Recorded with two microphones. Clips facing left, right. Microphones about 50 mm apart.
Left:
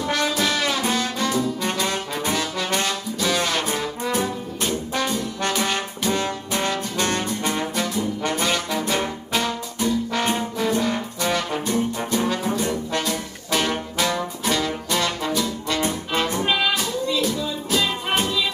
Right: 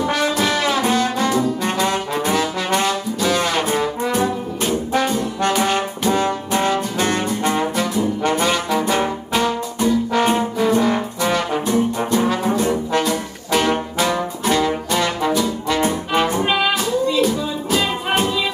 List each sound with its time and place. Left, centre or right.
0.0 s brass instrument: centre